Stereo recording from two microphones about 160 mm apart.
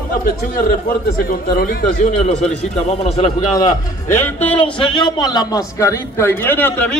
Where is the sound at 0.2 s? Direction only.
65° left (ahead or behind); by 3.4 s 45° left (ahead or behind).